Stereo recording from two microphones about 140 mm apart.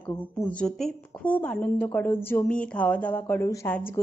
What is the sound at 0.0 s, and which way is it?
A woman's voice, 15° left (ahead or behind).